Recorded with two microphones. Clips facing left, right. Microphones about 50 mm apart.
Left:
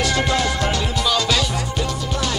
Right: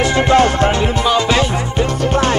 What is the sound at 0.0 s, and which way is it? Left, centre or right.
Music, right.